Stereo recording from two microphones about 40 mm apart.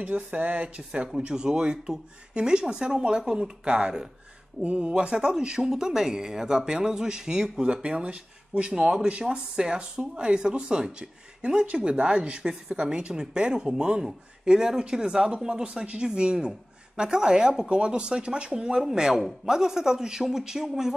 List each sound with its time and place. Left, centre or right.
0.0 s speech: right
1.1 s a woman's voice: centre
4.6 s a woman's voice: right